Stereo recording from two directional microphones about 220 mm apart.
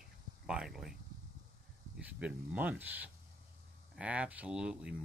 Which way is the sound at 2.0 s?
5° right (ahead or behind).